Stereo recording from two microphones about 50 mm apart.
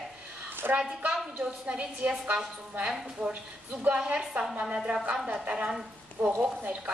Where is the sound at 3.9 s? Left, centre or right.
Right.